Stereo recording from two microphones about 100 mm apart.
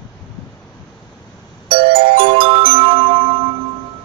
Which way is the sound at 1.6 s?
65° right (ahead or behind).